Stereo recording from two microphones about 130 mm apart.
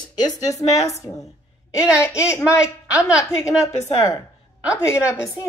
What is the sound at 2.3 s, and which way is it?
A woman's voice, 25° left (ahead or behind).